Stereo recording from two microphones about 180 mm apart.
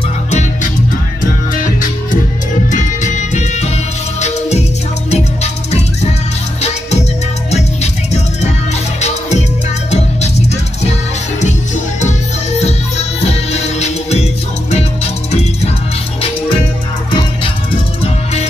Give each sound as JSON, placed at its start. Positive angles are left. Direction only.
{"t": 1.2, "sound": "music", "side_deg": 50}
{"t": 5.1, "sound": "music", "side_deg": 40}
{"t": 7.5, "sound": "music", "side_deg": 40}
{"t": 9.8, "sound": "music", "side_deg": 35}
{"t": 11.4, "sound": "music", "side_deg": 40}
{"t": 13.2, "sound": "music", "side_deg": 35}
{"t": 18.0, "sound": "music", "side_deg": 35}